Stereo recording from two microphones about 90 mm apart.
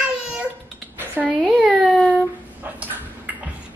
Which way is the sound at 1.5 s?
Centre (ahead or behind).